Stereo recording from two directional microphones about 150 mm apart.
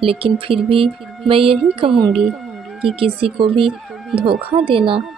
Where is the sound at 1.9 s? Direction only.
Centre (ahead or behind).